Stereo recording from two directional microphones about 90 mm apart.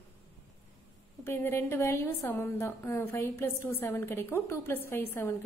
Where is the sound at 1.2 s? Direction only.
25° left (ahead or behind).